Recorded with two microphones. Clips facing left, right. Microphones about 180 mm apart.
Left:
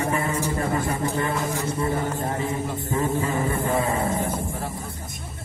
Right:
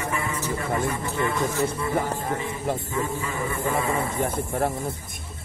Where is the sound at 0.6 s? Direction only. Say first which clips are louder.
Even; 40° left (ahead or behind).